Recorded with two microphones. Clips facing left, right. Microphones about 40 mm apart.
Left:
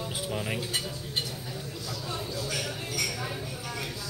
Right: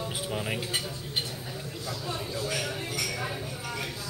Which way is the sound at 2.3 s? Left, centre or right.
Right.